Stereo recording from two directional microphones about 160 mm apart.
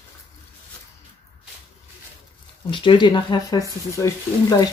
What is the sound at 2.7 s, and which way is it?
Speech, 30° left (ahead or behind).